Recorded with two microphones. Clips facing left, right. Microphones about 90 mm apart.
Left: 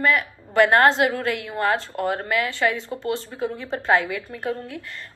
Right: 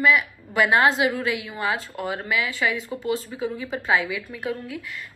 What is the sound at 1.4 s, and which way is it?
Speech, 50° left (ahead or behind).